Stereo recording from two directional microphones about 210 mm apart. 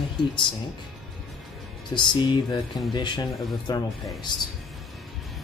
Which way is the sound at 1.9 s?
20° left (ahead or behind).